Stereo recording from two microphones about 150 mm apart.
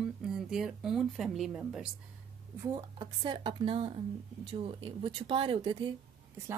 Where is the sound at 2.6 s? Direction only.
30° right (ahead or behind).